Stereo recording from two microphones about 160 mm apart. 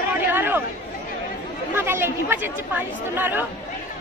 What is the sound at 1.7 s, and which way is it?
Speech, 15° right (ahead or behind).